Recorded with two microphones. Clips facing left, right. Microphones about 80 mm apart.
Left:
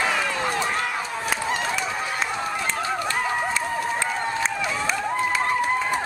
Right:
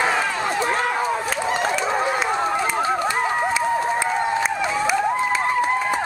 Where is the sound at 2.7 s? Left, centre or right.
Right.